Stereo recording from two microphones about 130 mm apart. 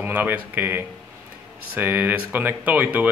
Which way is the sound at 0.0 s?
15° right (ahead or behind).